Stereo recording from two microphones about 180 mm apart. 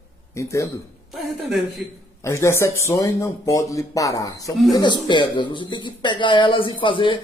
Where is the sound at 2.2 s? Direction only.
15° left (ahead or behind).